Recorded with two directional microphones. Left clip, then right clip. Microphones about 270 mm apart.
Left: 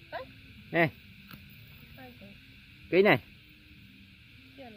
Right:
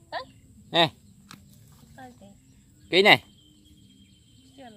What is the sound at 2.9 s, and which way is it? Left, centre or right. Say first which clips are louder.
Speech: right 6 dB; centre.